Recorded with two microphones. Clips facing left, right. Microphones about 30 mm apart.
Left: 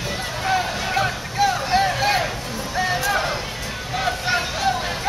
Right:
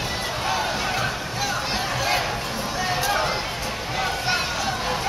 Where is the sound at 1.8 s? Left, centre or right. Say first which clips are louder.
Left 6 dB; left.